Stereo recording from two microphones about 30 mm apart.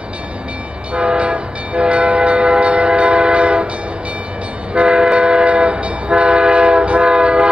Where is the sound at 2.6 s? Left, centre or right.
Right.